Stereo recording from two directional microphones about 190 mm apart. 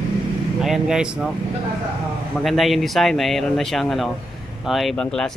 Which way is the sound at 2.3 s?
Centre (ahead or behind).